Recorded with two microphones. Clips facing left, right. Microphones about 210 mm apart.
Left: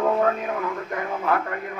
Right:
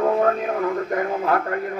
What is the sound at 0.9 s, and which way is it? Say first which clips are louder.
Speech: right 1 dB; 40° right (ahead or behind).